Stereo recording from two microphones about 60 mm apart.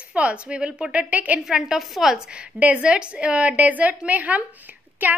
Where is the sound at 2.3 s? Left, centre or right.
Centre.